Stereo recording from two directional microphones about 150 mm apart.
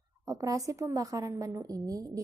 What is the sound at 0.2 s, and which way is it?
A woman's voice, 20° right (ahead or behind).